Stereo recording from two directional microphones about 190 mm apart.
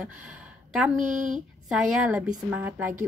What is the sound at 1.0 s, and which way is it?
Speech, 40° right (ahead or behind).